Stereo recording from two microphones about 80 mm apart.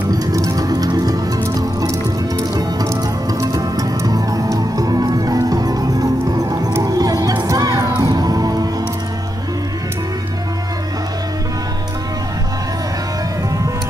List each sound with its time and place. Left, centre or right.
0.1 s music: right
7.4 s crowd: right
8.0 s music: right